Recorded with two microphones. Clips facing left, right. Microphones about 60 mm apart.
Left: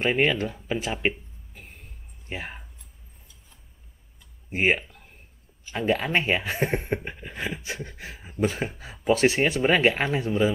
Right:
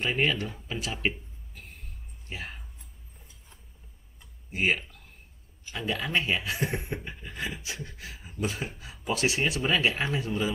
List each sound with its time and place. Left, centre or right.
0.0 s speech: left
0.9 s a sound: centre
2.2 s speech: left
4.5 s speech: left
5.7 s speech: left